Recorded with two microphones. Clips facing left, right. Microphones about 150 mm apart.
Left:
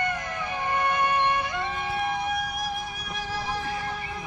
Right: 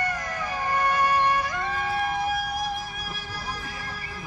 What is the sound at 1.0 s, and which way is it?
Music, 35° right (ahead or behind).